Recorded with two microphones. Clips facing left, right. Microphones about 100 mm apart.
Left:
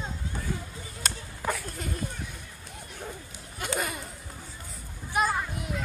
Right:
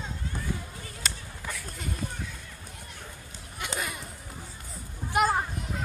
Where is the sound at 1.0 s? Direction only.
45° left (ahead or behind).